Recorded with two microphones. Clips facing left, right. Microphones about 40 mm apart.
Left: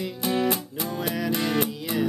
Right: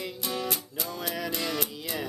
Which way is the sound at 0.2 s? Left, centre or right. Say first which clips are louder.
Left 9 dB; left.